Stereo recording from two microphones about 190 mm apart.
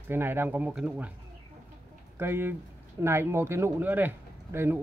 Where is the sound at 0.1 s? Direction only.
10° right (ahead or behind).